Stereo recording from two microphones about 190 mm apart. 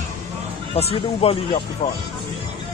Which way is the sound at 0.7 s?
30° left (ahead or behind).